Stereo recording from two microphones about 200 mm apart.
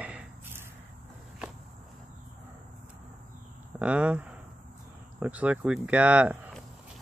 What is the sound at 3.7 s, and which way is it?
Speech, 5° right (ahead or behind).